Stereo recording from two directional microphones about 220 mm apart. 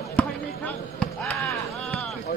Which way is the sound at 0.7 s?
5° left (ahead or behind).